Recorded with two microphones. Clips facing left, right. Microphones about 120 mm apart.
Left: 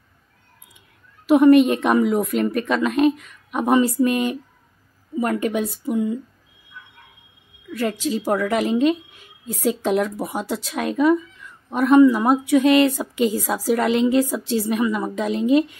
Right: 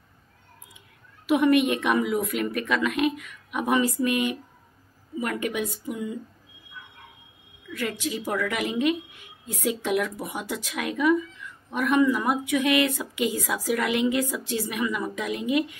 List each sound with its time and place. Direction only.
1.2 s a woman's voice: 35° left (ahead or behind)
7.7 s a woman's voice: 35° left (ahead or behind)